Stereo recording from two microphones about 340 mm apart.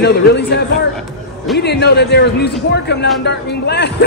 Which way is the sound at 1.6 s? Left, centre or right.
Left.